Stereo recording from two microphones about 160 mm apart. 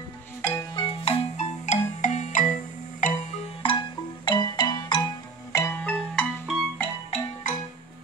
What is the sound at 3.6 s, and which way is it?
Music, 30° left (ahead or behind).